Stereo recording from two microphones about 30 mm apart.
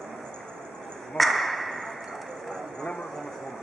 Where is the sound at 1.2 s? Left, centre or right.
Centre.